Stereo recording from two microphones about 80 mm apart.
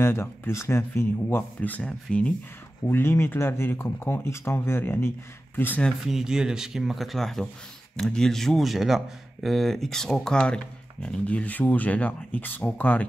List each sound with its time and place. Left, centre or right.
0.0 s speech: left
1.6 s speech: left
2.9 s speech: left
6.0 s speech: centre; by 13.0 s left